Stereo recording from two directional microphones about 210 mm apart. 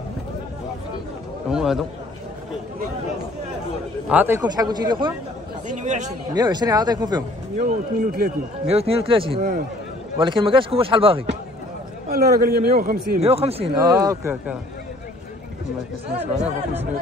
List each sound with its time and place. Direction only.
1.5 s a man's voice: centre (ahead or behind)
4.1 s a man's voice: 10° right (ahead or behind)
4.4 s a man's voice: 20° right (ahead or behind)
5.7 s speech: 35° right (ahead or behind)
6.3 s a man's voice: 20° right (ahead or behind)
7.5 s speech: 40° right (ahead or behind)
8.6 s a man's voice: 30° right (ahead or behind)
9.4 s speech: 40° right (ahead or behind)
10.1 s a man's voice: 25° right (ahead or behind)
12.1 s a man's voice: 45° right (ahead or behind)
13.2 s a man's voice: 30° right (ahead or behind)